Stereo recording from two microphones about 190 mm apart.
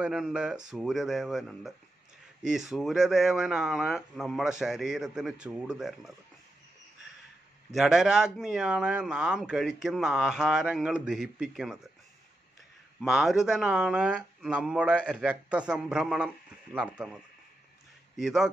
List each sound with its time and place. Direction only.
0.0 s speech: 5° right (ahead or behind)
7.7 s speech: centre (ahead or behind)
13.0 s speech: centre (ahead or behind)
18.1 s speech: centre (ahead or behind)